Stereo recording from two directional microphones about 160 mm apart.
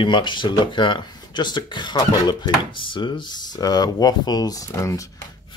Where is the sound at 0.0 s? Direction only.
30° left (ahead or behind).